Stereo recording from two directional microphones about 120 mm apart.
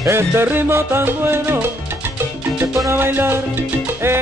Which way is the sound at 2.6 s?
20° right (ahead or behind).